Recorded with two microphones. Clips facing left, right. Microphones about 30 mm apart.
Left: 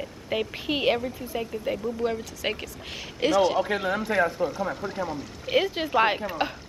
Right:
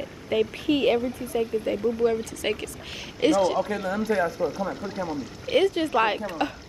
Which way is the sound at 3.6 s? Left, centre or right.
Left.